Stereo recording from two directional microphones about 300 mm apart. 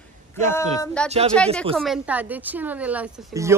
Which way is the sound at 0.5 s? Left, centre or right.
Centre.